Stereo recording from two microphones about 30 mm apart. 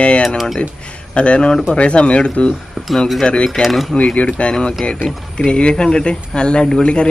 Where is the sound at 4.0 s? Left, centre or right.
Left.